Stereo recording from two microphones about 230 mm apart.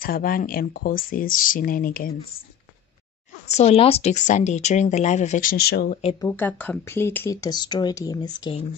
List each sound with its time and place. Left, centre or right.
0.0 s speech: left
3.4 s speech: left
6.2 s speech: centre